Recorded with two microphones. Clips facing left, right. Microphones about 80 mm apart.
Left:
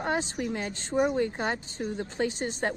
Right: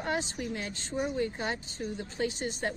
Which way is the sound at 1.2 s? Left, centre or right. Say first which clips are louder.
Left 4 dB; left.